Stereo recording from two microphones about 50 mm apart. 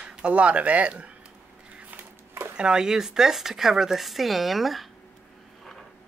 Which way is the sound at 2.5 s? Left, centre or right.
Centre.